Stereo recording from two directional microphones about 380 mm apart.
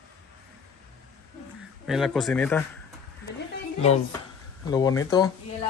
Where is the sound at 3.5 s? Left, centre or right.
Centre.